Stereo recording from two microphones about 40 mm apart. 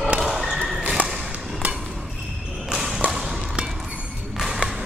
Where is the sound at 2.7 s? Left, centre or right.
Centre.